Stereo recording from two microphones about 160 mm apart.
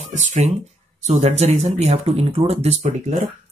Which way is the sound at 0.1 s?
50° right (ahead or behind).